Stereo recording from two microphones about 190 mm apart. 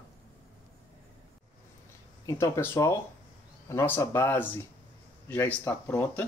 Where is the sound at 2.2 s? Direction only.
15° left (ahead or behind).